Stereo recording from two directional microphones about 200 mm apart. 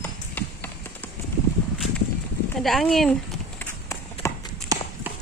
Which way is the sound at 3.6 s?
15° left (ahead or behind).